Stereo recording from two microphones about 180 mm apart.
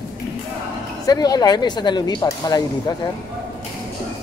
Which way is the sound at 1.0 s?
20° left (ahead or behind).